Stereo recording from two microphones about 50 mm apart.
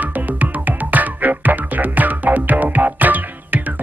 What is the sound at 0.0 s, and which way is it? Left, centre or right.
Music, right.